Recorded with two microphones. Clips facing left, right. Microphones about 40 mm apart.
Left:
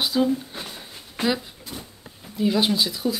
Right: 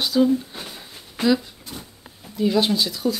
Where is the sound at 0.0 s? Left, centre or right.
Centre.